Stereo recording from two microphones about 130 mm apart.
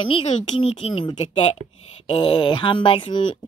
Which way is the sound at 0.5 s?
45° left (ahead or behind).